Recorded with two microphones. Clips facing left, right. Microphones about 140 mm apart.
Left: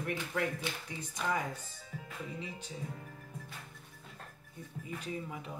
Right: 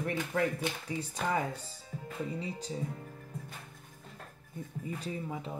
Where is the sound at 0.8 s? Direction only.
35° right (ahead or behind).